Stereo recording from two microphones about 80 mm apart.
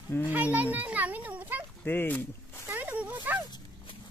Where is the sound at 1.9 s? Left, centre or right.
Left.